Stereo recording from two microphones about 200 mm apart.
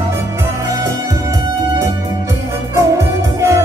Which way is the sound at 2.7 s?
15° right (ahead or behind).